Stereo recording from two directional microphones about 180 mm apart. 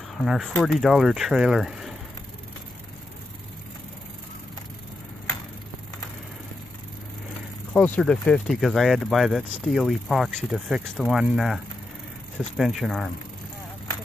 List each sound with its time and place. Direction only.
0.2 s speech: centre (ahead or behind)
7.7 s speech: 10° left (ahead or behind)